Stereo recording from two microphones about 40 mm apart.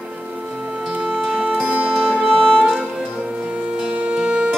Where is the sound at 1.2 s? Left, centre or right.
Right.